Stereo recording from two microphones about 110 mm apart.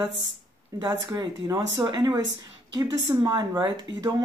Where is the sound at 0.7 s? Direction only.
45° right (ahead or behind).